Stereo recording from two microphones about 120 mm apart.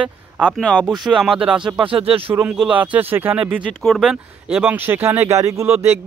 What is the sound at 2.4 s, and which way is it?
Speech, 10° right (ahead or behind).